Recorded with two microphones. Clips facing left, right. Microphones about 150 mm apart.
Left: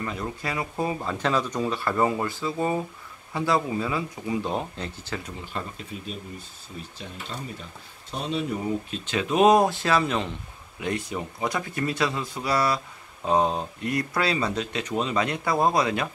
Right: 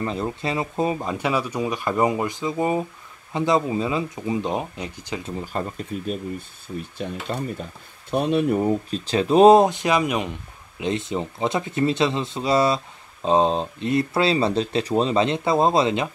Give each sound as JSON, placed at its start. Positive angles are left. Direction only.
{"t": 0.0, "sound": "speech", "side_deg": -30}
{"t": 5.4, "sound": "speech", "side_deg": -45}
{"t": 7.0, "sound": "speech", "side_deg": -55}
{"t": 8.9, "sound": "speech", "side_deg": -35}